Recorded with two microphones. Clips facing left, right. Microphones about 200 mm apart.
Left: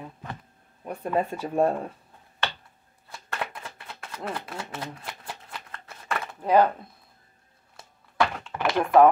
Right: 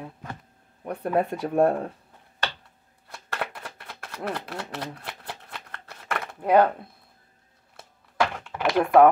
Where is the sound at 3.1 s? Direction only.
60° right (ahead or behind).